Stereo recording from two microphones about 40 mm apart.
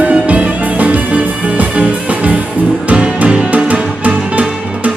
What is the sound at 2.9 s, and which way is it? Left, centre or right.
Music, right.